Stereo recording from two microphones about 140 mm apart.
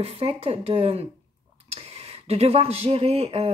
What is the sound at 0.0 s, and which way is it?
Speech, 45° right (ahead or behind).